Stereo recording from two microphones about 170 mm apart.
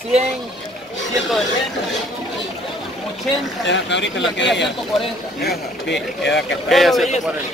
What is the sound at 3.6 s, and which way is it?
Speech, 90° left.